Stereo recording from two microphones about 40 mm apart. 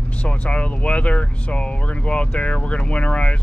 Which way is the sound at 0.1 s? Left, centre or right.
Left.